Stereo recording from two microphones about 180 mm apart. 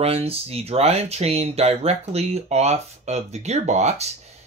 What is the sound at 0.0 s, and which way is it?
Speech, 35° right (ahead or behind).